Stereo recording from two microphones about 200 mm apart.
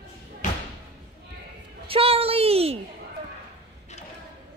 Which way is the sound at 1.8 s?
25° right (ahead or behind).